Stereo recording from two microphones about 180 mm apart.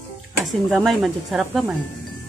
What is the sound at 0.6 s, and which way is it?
Speech, centre (ahead or behind).